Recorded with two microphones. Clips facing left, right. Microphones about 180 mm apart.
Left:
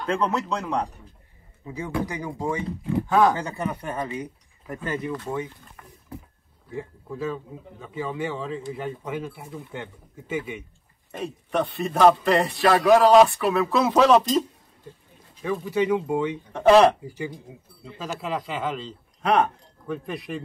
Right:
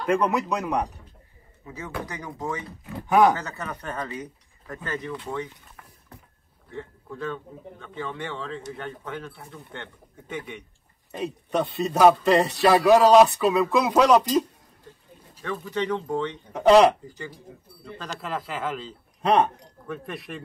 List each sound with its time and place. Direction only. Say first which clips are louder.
0.0 s speech: right 2 dB; 15° right (ahead or behind)
1.7 s speech: left 5 dB; 15° left (ahead or behind)
3.1 s speech: right 2 dB; 15° right (ahead or behind)
3.3 s speech: left 5 dB; 15° left (ahead or behind)
11.5 s speech: even; 20° right (ahead or behind)
12.7 s speech: even; 5° right (ahead or behind)
13.3 s speech: right 1 dB; 20° right (ahead or behind)
15.4 s speech: left 4 dB; 10° left (ahead or behind)
19.2 s speech: right 1 dB; 25° right (ahead or behind)
19.9 s speech: left 4 dB; centre (ahead or behind)